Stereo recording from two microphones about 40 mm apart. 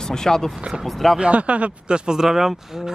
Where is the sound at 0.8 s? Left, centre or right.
Centre.